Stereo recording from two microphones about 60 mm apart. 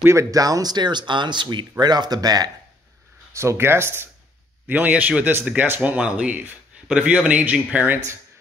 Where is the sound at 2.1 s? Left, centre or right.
Right.